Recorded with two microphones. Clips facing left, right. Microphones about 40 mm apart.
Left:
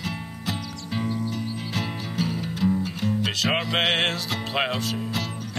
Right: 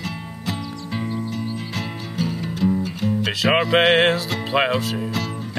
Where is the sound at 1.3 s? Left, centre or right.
Centre.